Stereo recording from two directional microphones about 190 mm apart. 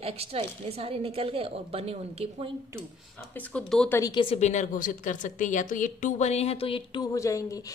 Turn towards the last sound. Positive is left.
turn(degrees=15)  # may be behind; listen again after turning